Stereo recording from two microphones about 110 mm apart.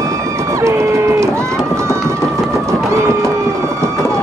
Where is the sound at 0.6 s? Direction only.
25° right (ahead or behind).